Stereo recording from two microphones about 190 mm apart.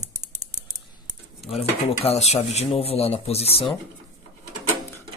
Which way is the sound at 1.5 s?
30° left (ahead or behind).